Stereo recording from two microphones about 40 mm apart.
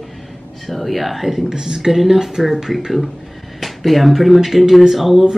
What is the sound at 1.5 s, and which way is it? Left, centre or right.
Speech, centre.